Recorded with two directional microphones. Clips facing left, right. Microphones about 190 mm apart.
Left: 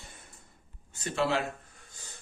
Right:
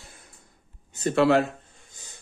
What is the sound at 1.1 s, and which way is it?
Speech, 65° right (ahead or behind).